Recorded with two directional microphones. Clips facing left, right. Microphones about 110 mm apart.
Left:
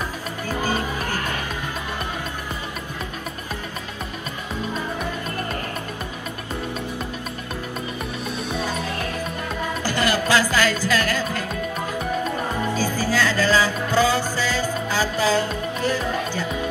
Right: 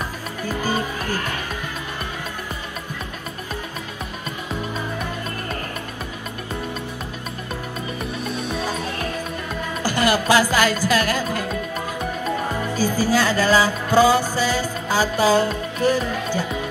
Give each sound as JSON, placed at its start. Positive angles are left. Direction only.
{"t": 9.8, "sound": "music", "side_deg": -15}
{"t": 12.7, "sound": "music", "side_deg": -15}